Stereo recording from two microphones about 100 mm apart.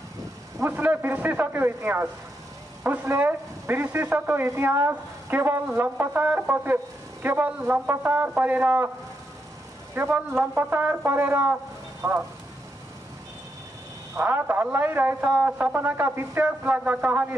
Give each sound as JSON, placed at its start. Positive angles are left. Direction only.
{"t": 0.6, "sound": "speech", "side_deg": -20}
{"t": 9.9, "sound": "speech", "side_deg": -20}
{"t": 14.1, "sound": "speech", "side_deg": -20}